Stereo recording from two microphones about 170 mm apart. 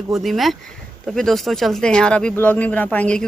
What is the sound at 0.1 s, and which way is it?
Speech, centre (ahead or behind).